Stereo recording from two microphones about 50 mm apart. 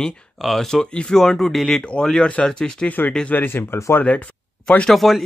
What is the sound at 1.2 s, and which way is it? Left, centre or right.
Speech, centre.